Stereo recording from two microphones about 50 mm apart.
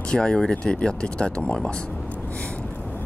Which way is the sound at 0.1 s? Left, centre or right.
Centre.